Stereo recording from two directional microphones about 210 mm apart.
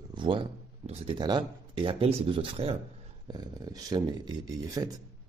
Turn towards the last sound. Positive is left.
turn(degrees=-15)  # may be behind; listen again after turning